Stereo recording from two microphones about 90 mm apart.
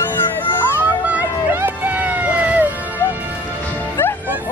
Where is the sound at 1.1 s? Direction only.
20° right (ahead or behind).